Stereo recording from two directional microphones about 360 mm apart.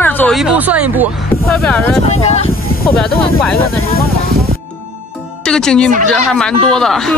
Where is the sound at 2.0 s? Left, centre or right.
Centre.